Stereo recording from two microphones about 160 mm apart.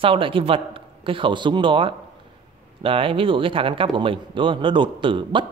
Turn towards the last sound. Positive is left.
turn(degrees=-30)  # may be behind; listen again after turning